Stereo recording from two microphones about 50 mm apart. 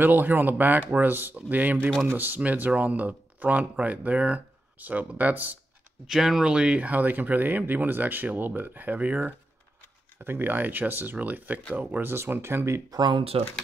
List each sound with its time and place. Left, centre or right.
0.0 s speech: right
6.0 s speech: centre; by 9.3 s right
10.2 s speech: right
12.0 s speech: right